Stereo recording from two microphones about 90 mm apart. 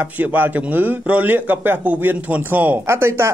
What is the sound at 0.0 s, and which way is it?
A man's voice, 20° right (ahead or behind).